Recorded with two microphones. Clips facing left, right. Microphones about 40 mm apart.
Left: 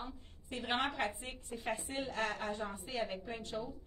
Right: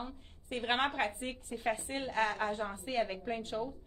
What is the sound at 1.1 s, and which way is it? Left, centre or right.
A woman's voice, right.